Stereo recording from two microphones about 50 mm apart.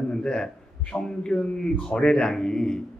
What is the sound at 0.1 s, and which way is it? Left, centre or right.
A man's voice, centre.